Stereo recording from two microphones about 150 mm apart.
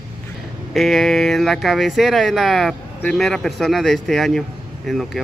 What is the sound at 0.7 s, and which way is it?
Speech, centre (ahead or behind).